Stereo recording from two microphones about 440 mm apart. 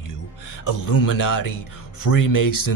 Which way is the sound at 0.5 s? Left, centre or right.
Left.